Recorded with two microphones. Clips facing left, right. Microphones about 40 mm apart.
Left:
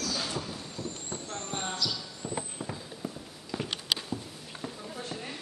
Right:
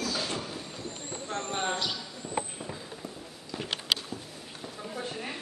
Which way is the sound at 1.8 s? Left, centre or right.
Right.